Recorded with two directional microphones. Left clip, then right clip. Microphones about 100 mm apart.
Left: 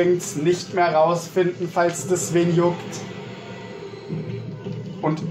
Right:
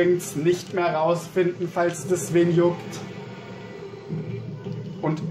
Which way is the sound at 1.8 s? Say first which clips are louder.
Left 4 dB; 20° right (ahead or behind).